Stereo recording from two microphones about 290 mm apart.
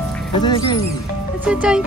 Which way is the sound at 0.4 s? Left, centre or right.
Centre.